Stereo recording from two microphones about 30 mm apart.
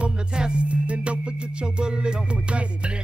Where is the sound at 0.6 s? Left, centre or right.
Right.